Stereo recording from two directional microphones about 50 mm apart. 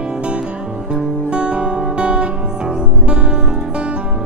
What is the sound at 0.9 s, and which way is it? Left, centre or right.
Guitar, centre.